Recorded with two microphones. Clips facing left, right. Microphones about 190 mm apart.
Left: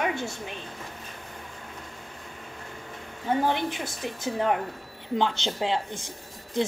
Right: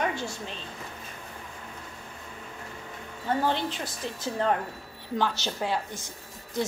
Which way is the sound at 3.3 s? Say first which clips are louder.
Left 2 dB; 15° left (ahead or behind).